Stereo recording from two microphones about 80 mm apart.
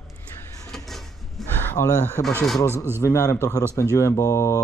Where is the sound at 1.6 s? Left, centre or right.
Left.